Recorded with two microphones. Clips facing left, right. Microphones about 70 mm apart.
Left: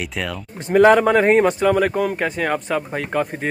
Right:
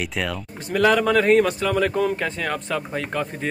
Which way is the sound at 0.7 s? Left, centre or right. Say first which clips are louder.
Left 6 dB; left.